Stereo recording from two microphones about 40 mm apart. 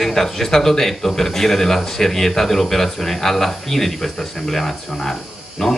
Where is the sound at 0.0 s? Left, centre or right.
Centre.